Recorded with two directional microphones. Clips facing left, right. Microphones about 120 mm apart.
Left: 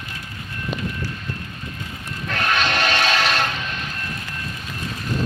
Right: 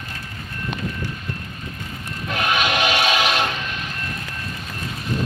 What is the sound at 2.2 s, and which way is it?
Train, 10° right (ahead or behind).